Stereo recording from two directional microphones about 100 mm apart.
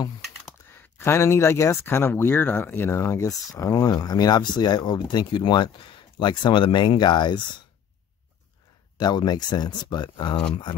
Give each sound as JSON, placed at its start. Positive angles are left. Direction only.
{"t": 0.9, "sound": "speech", "side_deg": 25}
{"t": 8.9, "sound": "speech", "side_deg": 45}